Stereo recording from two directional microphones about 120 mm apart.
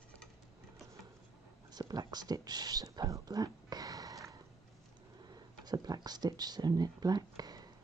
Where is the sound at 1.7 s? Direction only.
35° right (ahead or behind).